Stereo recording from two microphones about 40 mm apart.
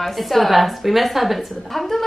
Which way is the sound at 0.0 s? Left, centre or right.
Centre.